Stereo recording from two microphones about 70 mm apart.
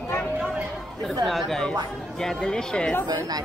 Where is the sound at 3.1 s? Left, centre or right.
Right.